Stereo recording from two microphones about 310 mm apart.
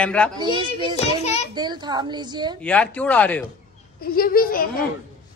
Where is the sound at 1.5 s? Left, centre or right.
Centre.